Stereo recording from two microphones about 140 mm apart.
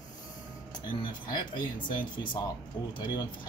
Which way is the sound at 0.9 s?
35° left (ahead or behind).